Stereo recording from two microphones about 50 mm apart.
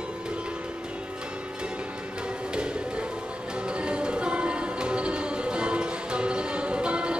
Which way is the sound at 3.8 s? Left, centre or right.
Centre.